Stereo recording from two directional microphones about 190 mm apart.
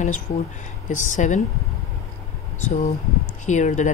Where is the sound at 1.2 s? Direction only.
40° left (ahead or behind).